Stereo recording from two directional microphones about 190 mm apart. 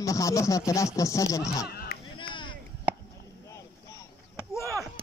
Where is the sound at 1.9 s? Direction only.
55° left (ahead or behind).